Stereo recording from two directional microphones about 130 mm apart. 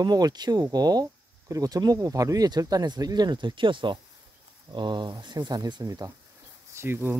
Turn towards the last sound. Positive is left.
turn(degrees=-15)  # may be behind; listen again after turning